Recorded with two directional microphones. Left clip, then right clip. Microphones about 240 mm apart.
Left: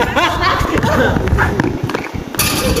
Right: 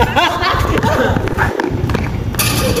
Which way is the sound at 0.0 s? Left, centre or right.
Right.